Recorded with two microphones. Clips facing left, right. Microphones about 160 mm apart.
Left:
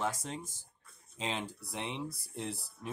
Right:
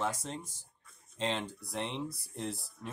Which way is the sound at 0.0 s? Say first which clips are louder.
Right 1 dB; 5° left (ahead or behind).